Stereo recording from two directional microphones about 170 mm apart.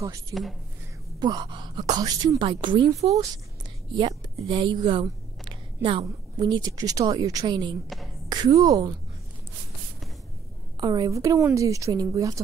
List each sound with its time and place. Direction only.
0.3 s speech: centre (ahead or behind)
1.2 s a woman's voice: 25° right (ahead or behind)
5.0 s a sound: 25° right (ahead or behind)
6.4 s a woman's voice: 20° right (ahead or behind)
10.8 s a woman's voice: 25° right (ahead or behind)